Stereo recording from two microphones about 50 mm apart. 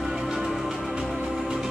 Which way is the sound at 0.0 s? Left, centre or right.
Centre.